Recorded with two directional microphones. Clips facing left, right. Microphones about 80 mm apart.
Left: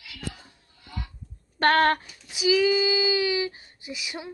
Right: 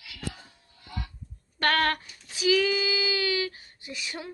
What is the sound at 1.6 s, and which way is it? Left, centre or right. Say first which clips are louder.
Speech: left 5 dB; left.